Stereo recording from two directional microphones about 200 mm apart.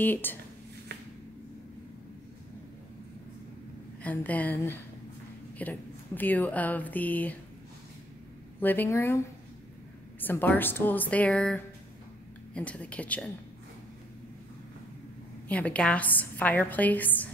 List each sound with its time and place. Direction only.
0.0 s a woman's voice: 10° left (ahead or behind)
4.0 s a woman's voice: 10° left (ahead or behind)
8.5 s a woman's voice: 10° left (ahead or behind)
10.2 s a woman's voice: 10° left (ahead or behind)
15.4 s a woman's voice: 5° left (ahead or behind)